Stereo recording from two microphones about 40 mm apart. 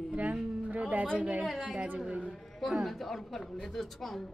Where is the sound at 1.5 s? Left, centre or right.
Centre.